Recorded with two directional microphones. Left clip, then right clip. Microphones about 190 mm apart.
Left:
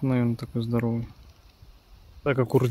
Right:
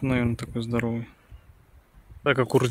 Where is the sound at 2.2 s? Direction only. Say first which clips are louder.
Right 2 dB; centre (ahead or behind).